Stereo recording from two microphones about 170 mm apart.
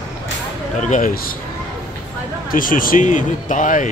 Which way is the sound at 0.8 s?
50° left (ahead or behind).